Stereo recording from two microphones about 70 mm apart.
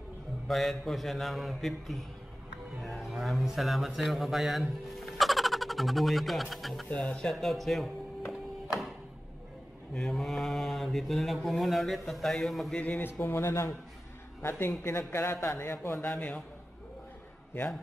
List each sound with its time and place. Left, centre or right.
0.5 s mantra: centre
2.8 s a man's voice: centre
6.9 s music: centre
9.9 s mantra: centre
12.7 s a man's voice: centre
13.2 s a man's voice: left
16.0 s a man's voice: centre